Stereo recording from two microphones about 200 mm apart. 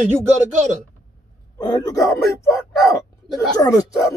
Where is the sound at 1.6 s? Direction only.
20° left (ahead or behind).